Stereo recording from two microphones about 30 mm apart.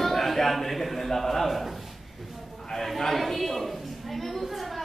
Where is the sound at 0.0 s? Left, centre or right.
Centre.